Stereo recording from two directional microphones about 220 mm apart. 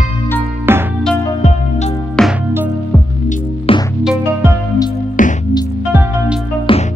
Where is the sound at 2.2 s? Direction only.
5° left (ahead or behind).